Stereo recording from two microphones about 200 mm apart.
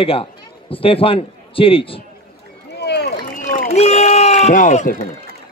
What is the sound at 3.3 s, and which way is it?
Run, 40° left (ahead or behind).